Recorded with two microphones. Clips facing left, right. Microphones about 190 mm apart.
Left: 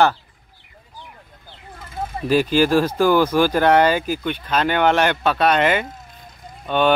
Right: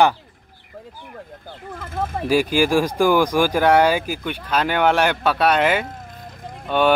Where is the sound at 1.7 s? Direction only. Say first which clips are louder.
Right 3 dB; 55° right (ahead or behind).